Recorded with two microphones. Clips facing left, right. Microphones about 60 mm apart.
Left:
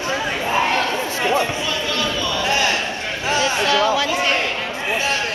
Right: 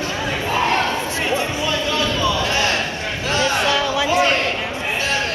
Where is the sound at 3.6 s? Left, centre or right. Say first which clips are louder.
Left 1 dB; centre.